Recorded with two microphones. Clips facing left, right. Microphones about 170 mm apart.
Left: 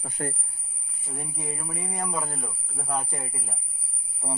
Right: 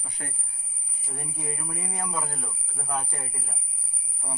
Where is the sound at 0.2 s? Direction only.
45° left (ahead or behind).